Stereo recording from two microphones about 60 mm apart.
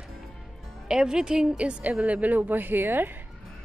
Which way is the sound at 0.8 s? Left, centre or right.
Centre.